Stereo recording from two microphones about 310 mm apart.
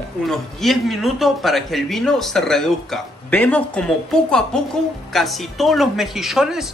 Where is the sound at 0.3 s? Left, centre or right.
Centre.